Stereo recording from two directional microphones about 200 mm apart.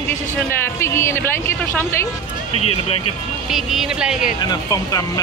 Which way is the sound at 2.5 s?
30° left (ahead or behind).